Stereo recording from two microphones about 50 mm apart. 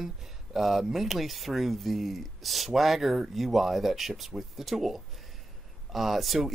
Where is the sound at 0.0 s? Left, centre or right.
Centre.